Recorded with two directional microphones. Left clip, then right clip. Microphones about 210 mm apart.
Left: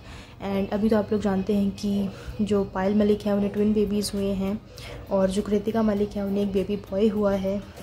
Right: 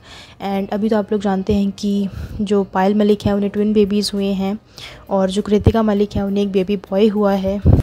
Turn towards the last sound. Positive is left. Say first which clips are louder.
# right 7 dB
turn(degrees=-40)  # may be behind; listen again after turning